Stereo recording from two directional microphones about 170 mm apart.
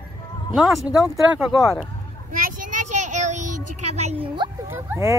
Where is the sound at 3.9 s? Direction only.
35° right (ahead or behind).